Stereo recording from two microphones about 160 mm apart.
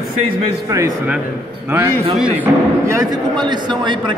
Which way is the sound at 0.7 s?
20° right (ahead or behind).